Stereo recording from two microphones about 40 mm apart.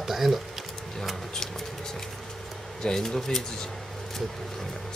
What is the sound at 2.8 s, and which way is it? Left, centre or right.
Speech, centre.